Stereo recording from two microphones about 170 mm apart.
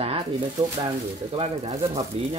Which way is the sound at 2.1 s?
35° right (ahead or behind).